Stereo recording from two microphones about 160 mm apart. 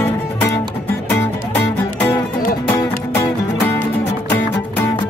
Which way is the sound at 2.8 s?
20° left (ahead or behind).